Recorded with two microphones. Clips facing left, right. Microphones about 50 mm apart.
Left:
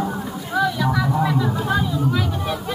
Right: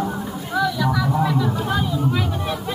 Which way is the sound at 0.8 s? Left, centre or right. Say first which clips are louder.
Even; centre.